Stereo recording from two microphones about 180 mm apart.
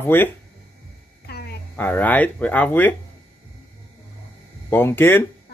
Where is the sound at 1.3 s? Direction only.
65° left (ahead or behind).